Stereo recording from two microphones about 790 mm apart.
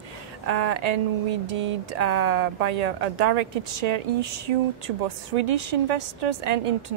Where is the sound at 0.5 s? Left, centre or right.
Right.